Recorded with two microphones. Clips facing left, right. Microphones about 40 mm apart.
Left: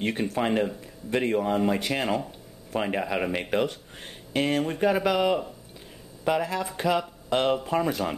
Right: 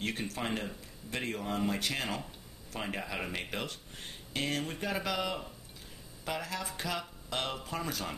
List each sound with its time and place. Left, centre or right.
0.0 s speech: left